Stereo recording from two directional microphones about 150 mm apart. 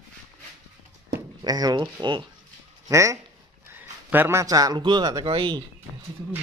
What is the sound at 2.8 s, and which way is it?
A man's voice, 20° right (ahead or behind).